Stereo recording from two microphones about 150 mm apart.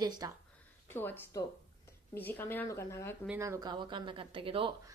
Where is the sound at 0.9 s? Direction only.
15° left (ahead or behind).